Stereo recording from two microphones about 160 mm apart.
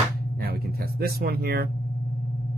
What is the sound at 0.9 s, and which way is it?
Speech, 70° right (ahead or behind).